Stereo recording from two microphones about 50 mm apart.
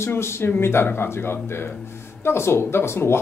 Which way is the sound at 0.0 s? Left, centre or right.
Left.